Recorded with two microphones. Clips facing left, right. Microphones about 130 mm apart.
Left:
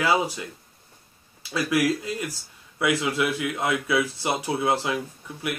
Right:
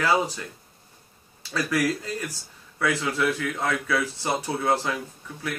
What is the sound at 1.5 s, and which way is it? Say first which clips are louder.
Speech: left 2 dB; 15° left (ahead or behind).